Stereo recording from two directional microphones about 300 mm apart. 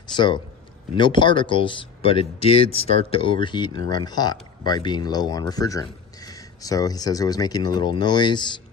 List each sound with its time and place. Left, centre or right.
0.1 s a man's voice: centre